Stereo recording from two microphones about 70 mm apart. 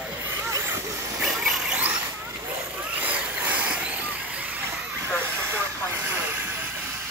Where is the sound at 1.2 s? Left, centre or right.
Centre.